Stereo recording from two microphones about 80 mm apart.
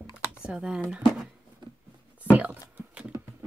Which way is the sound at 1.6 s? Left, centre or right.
Right.